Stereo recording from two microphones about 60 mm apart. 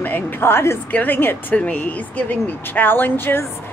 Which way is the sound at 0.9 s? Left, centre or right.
Left.